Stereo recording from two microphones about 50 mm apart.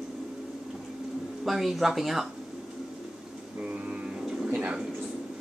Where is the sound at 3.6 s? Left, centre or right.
Right.